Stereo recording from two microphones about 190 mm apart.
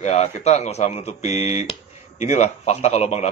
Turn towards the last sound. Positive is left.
turn(degrees=35)  # may be behind; listen again after turning